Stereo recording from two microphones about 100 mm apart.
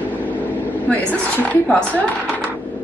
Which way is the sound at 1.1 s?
15° left (ahead or behind).